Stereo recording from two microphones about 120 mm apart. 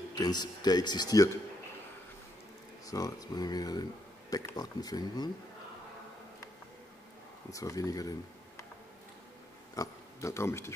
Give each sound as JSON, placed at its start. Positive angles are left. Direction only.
{"t": 0.1, "sound": "a man's voice", "side_deg": 35}
{"t": 2.9, "sound": "a man's voice", "side_deg": 30}
{"t": 7.5, "sound": "speech", "side_deg": 30}
{"t": 9.8, "sound": "speech", "side_deg": 25}